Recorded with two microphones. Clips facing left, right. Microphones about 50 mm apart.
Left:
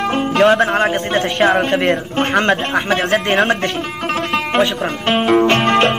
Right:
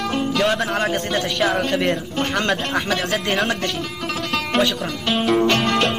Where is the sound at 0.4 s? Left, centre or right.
Left.